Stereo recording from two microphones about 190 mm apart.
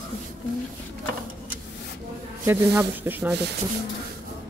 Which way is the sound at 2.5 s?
10° right (ahead or behind).